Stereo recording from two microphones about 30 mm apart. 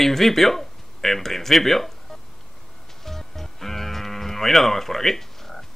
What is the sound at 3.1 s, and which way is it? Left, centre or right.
Music, centre.